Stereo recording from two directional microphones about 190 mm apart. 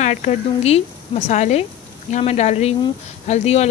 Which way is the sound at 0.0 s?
40° left (ahead or behind).